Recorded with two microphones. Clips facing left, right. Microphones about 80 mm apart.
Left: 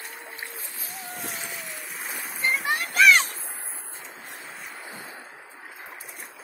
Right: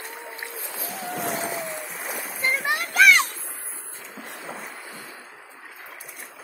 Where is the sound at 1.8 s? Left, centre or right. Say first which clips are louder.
Right 3 dB; centre.